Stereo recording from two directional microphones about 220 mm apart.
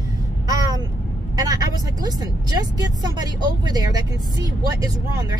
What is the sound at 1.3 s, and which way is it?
Speech, 15° right (ahead or behind).